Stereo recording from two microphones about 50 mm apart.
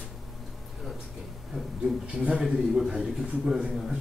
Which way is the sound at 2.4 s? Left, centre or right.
Centre.